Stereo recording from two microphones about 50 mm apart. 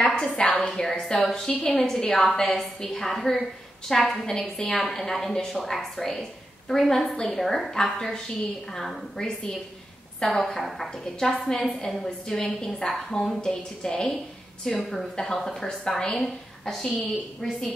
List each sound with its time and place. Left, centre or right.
0.1 s a woman's voice: centre
10.4 s a woman's voice: centre
15.8 s a woman's voice: centre